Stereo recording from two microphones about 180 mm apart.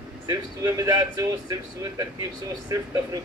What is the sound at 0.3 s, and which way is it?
A man's voice, 20° right (ahead or behind).